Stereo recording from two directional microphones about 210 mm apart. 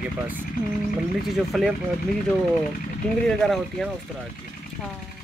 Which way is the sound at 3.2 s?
Centre (ahead or behind).